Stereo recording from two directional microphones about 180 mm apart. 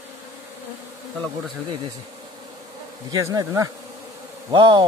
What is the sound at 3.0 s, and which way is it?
Bee, 20° right (ahead or behind).